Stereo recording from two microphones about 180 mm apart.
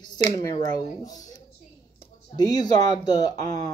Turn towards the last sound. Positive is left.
turn(degrees=20)  # may be behind; listen again after turning